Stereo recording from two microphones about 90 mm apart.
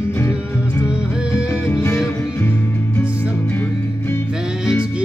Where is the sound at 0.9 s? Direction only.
10° right (ahead or behind).